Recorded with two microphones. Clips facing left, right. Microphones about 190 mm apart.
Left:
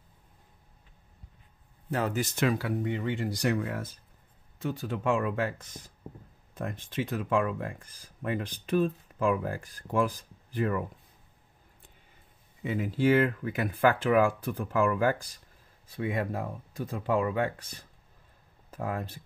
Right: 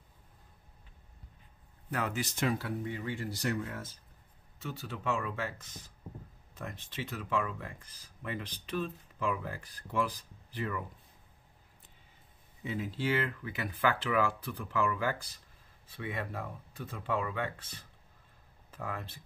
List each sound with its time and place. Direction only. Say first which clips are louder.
1.9 s speech: left 5 dB; 30° left (ahead or behind)
2.3 s speech: left 4 dB; 85° left; by 3.3 s 70° left (ahead or behind)
3.3 s speech: left 6 dB; 80° left
4.6 s speech: left 8 dB; 50° left (ahead or behind)
12.6 s speech: left 8 dB; 60° left (ahead or behind); by 19.1 s 45° left (ahead or behind)